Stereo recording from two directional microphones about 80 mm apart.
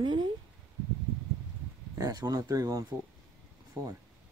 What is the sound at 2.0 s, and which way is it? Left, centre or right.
Speech, right.